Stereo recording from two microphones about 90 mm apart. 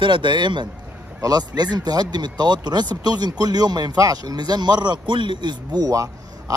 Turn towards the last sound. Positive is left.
turn(degrees=-40)  # may be behind; listen again after turning